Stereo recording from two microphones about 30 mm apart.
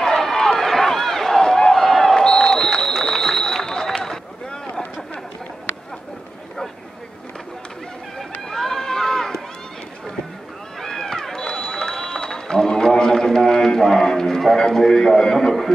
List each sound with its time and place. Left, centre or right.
0.2 s run: centre
2.2 s run: left
8.2 s run: centre
10.8 s run: centre
14.5 s a sound: centre